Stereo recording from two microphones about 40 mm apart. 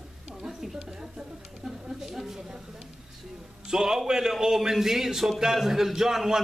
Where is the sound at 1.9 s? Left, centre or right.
Centre.